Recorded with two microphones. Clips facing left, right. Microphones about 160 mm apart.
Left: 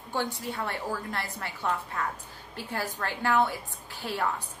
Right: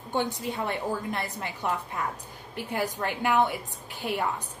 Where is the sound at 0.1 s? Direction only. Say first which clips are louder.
Right 3 dB; 20° right (ahead or behind).